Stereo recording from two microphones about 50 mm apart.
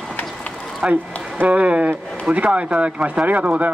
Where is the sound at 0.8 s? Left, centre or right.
Right.